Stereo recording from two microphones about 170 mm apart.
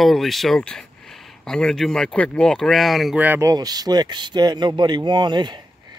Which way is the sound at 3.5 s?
20° right (ahead or behind).